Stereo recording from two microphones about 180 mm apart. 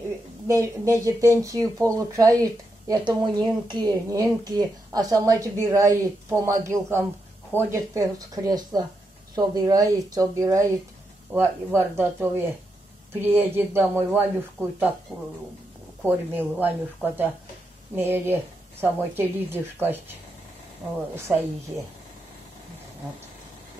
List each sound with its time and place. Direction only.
0.5 s speech: 15° right (ahead or behind)
16.1 s speech: 10° right (ahead or behind)
21.3 s a woman's voice: centre (ahead or behind)